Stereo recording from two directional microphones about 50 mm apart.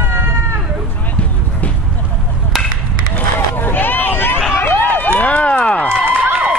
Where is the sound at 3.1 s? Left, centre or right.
Left.